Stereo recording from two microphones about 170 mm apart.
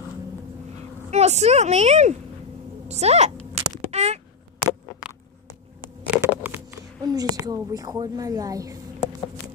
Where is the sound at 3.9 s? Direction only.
40° right (ahead or behind).